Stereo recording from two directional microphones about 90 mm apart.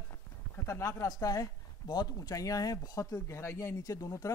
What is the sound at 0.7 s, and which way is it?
Speech, 35° left (ahead or behind).